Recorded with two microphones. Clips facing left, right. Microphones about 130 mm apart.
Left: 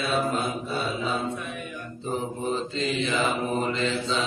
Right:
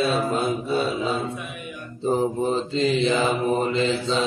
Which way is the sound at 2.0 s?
35° right (ahead or behind).